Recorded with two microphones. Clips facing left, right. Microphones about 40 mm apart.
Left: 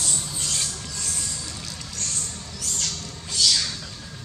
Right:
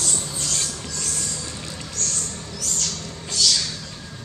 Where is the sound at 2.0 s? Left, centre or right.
Centre.